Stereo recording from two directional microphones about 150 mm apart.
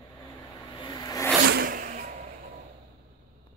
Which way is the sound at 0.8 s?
25° left (ahead or behind).